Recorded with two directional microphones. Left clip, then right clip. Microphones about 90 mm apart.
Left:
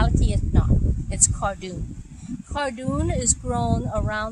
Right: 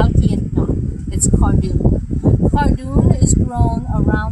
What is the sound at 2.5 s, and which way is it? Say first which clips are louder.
Speech: right 7 dB; 15° left (ahead or behind).